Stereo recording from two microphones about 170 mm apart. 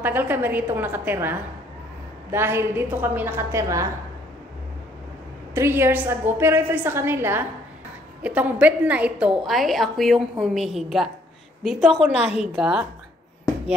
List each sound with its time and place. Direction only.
0.0 s a woman's voice: 10° right (ahead or behind)
5.5 s a woman's voice: 15° right (ahead or behind)